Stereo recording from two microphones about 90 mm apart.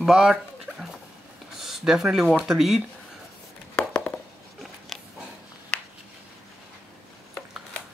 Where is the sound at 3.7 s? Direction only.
15° left (ahead or behind).